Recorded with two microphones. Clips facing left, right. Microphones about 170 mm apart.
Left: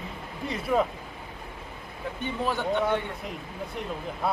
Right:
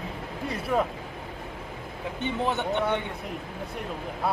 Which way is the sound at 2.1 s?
25° right (ahead or behind).